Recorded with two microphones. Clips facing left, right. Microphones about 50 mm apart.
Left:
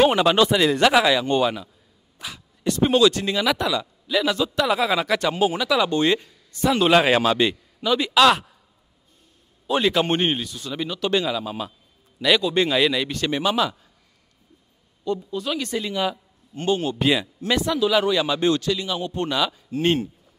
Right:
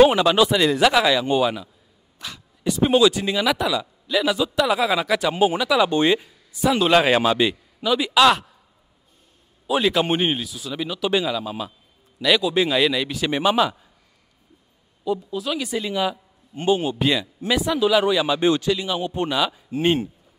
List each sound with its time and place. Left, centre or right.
0.0 s speech: centre
5.3 s a man's voice: centre
5.9 s speech: right
6.1 s speech: centre
9.7 s speech: centre
13.3 s a man's voice: centre
15.0 s speech: centre
16.5 s a man's voice: centre
17.0 s speech: centre
17.5 s a man's voice: centre